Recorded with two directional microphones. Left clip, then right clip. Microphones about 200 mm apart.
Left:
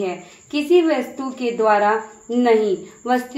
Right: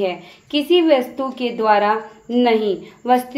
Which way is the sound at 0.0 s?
35° right (ahead or behind).